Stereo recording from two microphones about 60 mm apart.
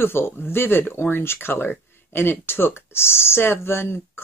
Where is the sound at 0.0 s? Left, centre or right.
Left.